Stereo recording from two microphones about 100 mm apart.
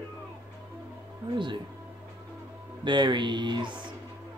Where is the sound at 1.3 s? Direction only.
50° right (ahead or behind).